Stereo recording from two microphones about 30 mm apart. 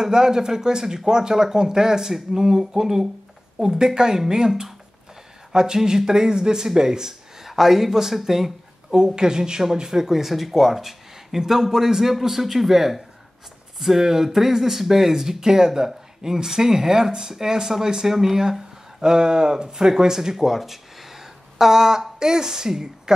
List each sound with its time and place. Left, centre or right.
0.0 s speech: right
4.5 s speech: centre
5.5 s speech: right
7.4 s speech: centre
8.9 s speech: right
20.3 s a sound: centre
22.2 s speech: centre